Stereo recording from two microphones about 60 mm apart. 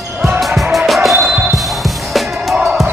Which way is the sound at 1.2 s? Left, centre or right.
Right.